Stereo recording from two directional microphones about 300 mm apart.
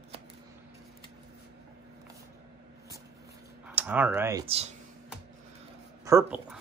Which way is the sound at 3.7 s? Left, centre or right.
Centre.